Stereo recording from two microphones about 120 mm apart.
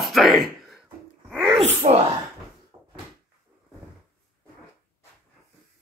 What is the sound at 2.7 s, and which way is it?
Cupboard open or close, 30° right (ahead or behind).